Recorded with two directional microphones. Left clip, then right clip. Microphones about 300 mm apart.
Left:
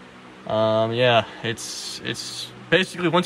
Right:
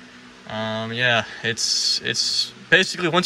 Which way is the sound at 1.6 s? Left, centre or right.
Centre.